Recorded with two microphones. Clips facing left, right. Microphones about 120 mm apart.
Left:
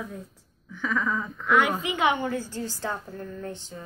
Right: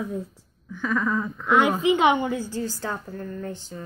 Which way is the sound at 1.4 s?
25° right (ahead or behind).